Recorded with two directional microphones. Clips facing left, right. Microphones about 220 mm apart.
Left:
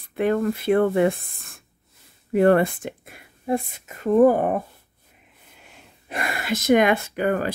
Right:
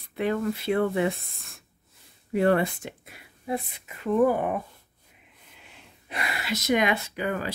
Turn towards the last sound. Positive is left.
turn(degrees=50)  # may be behind; listen again after turning